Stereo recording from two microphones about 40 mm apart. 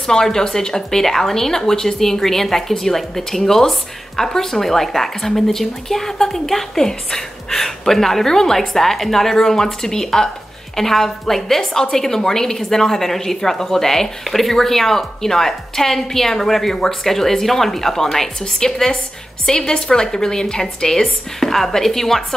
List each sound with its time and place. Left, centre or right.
0.0 s a woman's voice: centre
18.6 s a woman's voice: centre